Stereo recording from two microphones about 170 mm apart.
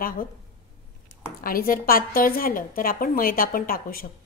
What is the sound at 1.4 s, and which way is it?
A woman's voice, 55° left (ahead or behind).